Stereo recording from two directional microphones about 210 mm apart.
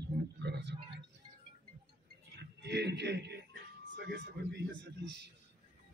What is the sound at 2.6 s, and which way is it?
A man's voice, 55° right (ahead or behind).